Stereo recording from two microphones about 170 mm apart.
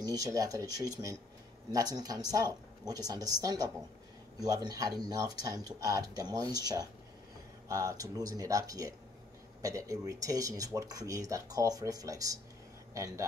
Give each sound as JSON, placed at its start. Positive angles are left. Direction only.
{"t": 0.0, "sound": "speech", "side_deg": -20}